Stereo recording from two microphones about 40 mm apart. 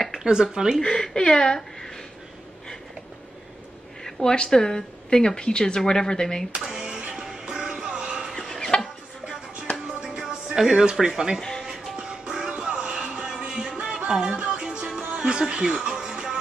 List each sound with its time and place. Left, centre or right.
0.2 s speech: centre
0.8 s speech: centre
4.0 s speech: centre
6.7 s music: centre
8.4 s music: centre
10.0 s music: centre
10.9 s speech: centre
12.0 s music: right